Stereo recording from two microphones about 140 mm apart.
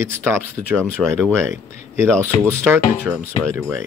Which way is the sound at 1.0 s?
5° left (ahead or behind).